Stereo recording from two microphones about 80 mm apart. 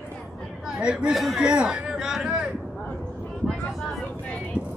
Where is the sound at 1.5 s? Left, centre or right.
Centre.